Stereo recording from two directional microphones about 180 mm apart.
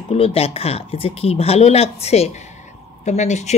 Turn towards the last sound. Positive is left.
turn(degrees=40)  # may be behind; listen again after turning